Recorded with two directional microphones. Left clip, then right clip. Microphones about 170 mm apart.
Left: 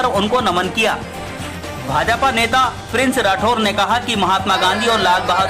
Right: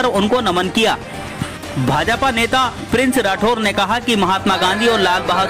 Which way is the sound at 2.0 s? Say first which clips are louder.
Left 2 dB; 30° right (ahead or behind).